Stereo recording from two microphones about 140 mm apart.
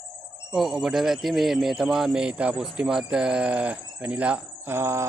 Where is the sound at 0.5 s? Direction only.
Centre (ahead or behind).